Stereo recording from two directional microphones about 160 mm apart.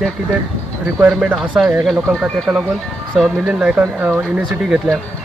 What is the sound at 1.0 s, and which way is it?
Speech, 10° right (ahead or behind).